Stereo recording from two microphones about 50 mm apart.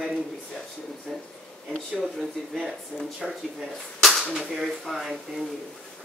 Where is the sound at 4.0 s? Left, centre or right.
Centre.